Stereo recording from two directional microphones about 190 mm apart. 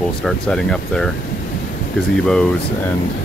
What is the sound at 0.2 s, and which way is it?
Speech, 5° left (ahead or behind).